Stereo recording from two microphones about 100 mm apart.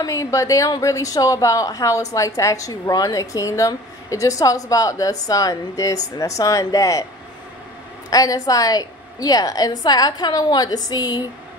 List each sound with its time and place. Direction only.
0.0 s a woman's voice: 35° left (ahead or behind)
8.1 s a woman's voice: 35° left (ahead or behind)